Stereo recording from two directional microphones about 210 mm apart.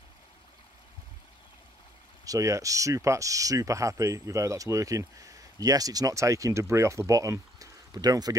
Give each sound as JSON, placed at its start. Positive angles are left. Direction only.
{"t": 2.2, "sound": "speech", "side_deg": -15}